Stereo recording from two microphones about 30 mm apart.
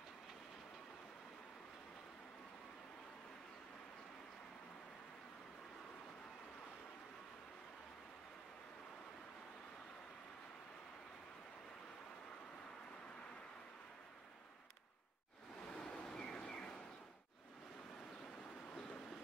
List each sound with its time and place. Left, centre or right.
15.7 s vehicle: left